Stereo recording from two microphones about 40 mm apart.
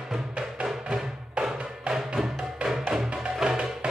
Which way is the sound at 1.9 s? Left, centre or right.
Centre.